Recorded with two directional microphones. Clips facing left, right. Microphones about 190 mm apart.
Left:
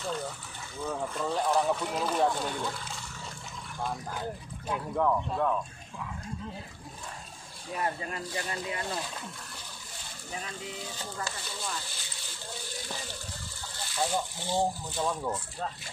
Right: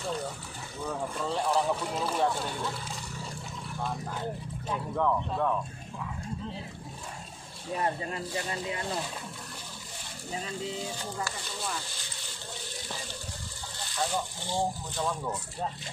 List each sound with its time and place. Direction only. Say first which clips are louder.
0.8 s speech: left 1 dB; centre (ahead or behind)
4.6 s speech: left 1 dB; 5° left (ahead or behind)
7.7 s speech: right 2 dB; 25° right (ahead or behind)
10.3 s speech: right 4 dB; 25° right (ahead or behind)
13.9 s speech: left 1 dB; 15° left (ahead or behind)